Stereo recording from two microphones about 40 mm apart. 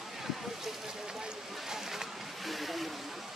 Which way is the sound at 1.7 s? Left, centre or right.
Centre.